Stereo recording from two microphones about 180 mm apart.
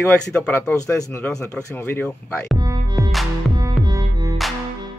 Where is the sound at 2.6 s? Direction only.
20° right (ahead or behind).